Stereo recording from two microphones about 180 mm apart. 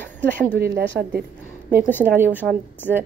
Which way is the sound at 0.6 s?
60° right (ahead or behind).